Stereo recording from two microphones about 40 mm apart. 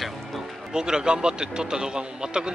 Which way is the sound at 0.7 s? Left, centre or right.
Centre.